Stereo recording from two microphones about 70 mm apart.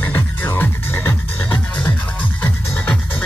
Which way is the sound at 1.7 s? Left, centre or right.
Centre.